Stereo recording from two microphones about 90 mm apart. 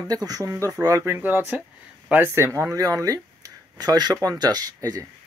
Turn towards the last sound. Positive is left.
turn(degrees=-40)  # may be behind; listen again after turning